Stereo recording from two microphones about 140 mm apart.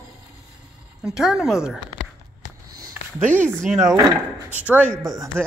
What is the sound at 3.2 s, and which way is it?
Speech, 15° right (ahead or behind).